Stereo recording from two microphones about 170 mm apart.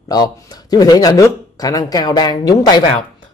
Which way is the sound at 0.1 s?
25° left (ahead or behind).